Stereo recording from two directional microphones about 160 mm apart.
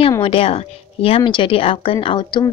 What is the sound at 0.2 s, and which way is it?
A woman's voice, 35° left (ahead or behind).